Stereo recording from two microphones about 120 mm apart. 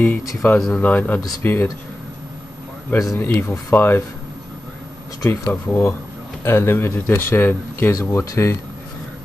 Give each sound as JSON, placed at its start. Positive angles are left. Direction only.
{"t": 0.2, "sound": "speech", "side_deg": 30}
{"t": 0.6, "sound": "speech", "side_deg": 0}
{"t": 0.8, "sound": "speech", "side_deg": 15}
{"t": 2.9, "sound": "speech", "side_deg": 25}
{"t": 5.2, "sound": "speech", "side_deg": 25}